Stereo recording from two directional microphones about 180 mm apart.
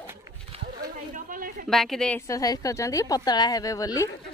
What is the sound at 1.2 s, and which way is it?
Speech, 50° right (ahead or behind).